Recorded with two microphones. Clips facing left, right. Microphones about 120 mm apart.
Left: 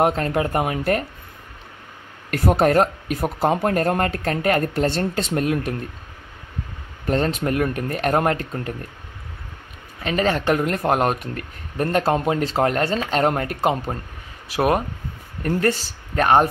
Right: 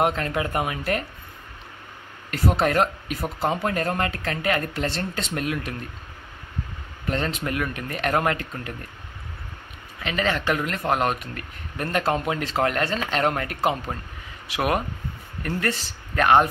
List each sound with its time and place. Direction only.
0.0 s speech: 40° left (ahead or behind)
2.3 s speech: 50° left (ahead or behind)
7.1 s speech: 40° left (ahead or behind)
9.9 s speech: 40° left (ahead or behind)